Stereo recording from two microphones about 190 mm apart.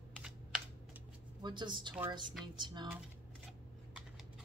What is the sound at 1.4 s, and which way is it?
A woman's voice, 25° right (ahead or behind).